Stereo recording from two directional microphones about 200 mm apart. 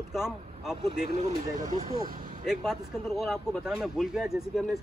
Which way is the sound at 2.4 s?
Centre (ahead or behind).